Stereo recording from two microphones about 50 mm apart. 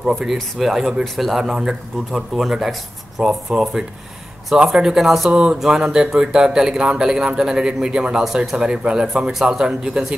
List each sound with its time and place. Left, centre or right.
0.2 s a man's voice: centre
5.3 s a man's voice: centre